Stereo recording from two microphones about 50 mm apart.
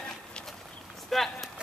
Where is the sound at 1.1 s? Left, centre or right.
Centre.